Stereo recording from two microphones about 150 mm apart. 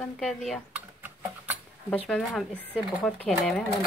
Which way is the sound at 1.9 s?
5° left (ahead or behind).